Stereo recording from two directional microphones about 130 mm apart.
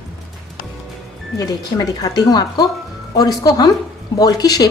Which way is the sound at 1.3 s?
30° left (ahead or behind).